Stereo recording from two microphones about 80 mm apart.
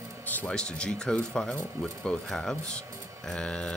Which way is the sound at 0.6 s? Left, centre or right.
Centre.